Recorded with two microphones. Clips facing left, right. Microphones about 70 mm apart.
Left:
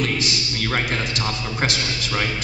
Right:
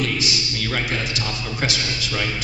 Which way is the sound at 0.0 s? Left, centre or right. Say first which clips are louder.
Even; left.